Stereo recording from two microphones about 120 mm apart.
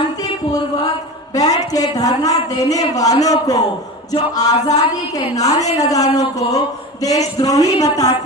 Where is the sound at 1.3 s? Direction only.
30° left (ahead or behind).